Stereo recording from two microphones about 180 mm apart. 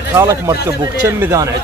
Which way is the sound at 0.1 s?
15° right (ahead or behind).